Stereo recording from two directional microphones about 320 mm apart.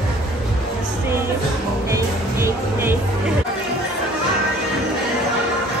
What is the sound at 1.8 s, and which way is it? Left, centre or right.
Music, centre.